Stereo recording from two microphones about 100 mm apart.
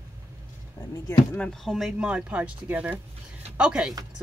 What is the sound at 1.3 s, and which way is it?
Speech, 10° left (ahead or behind).